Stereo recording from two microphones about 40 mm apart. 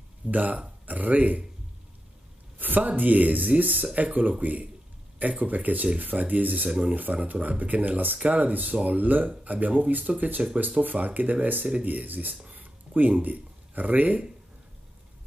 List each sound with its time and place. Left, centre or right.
0.3 s speech: right
2.6 s speech: right
12.4 s a sound: right